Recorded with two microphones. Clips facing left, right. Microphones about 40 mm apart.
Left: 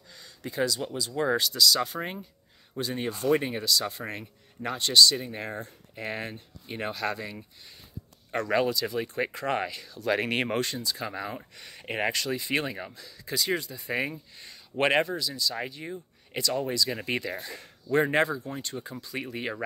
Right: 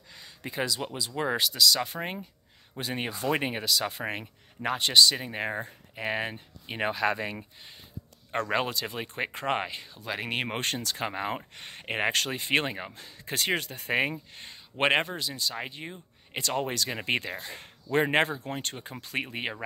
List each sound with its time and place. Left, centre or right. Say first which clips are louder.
0.1 s speech: left 1 dB; right
1.6 s speech: left 1 dB; centre
2.8 s speech: left 1 dB; right
3.1 s speech: left 5 dB; centre
3.3 s speech: left 1 dB; right
7.2 s speech: right 4 dB; right
10.0 s speech: left 5 dB; centre
11.0 s speech: right 3 dB; right
16.9 s speech: right 1 dB; right
18.4 s speech: even; right
19.2 s speech: even; right